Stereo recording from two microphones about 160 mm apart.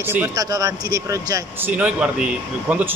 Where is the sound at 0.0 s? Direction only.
10° right (ahead or behind).